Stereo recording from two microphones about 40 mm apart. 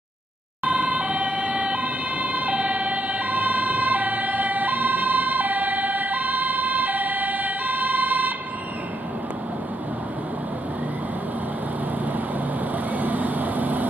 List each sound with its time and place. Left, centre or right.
0.7 s ambulance: right
12.9 s vehicle: right